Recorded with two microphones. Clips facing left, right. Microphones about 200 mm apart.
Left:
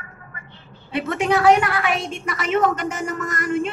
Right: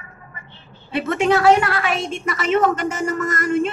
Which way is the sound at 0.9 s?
15° left (ahead or behind).